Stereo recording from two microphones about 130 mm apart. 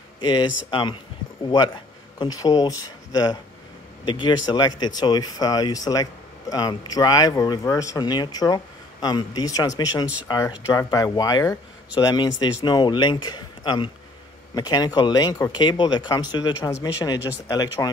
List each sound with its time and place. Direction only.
0.2 s speech: 35° left (ahead or behind)
2.1 s speech: 30° left (ahead or behind)